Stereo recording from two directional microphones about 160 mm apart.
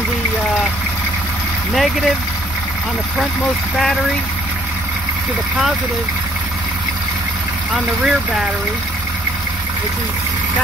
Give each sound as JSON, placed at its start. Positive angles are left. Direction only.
{"t": 1.7, "sound": "speech", "side_deg": 0}
{"t": 7.7, "sound": "speech", "side_deg": 0}